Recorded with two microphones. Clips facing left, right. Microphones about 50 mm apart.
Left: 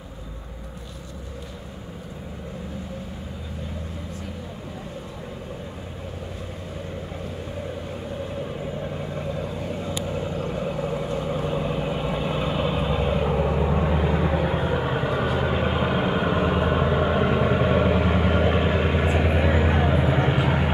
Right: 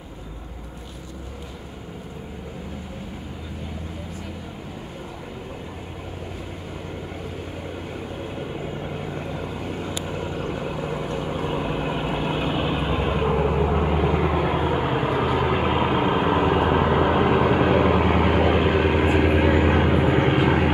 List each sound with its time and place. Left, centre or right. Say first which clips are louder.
9.4 s vehicle: even; right